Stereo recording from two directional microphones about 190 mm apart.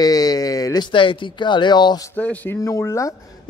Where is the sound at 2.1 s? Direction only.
10° left (ahead or behind).